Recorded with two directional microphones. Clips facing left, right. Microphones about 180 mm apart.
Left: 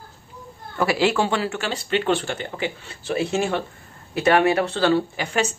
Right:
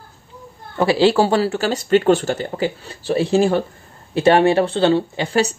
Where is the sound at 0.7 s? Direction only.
30° right (ahead or behind).